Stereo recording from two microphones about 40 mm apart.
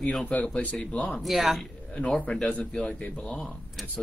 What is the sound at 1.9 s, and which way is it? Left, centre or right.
A man's voice, left.